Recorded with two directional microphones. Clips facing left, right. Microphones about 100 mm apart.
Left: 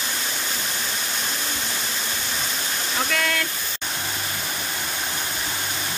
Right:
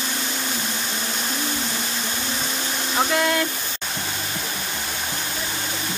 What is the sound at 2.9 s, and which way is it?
Speech, 25° right (ahead or behind).